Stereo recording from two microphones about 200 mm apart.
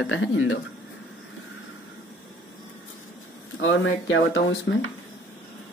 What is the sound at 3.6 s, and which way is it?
Speech, 75° left (ahead or behind).